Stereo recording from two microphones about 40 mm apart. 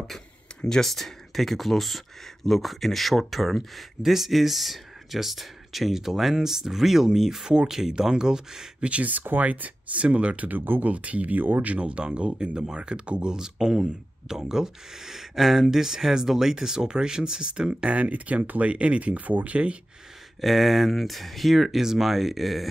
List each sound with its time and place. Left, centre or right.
0.5 s a sound: left
0.8 s speech: centre
8.8 s speech: right
9.1 s speech: right
9.4 s speech: right
10.9 s speech: right
11.6 s speech: right
17.9 s speech: right
20.3 s speech: centre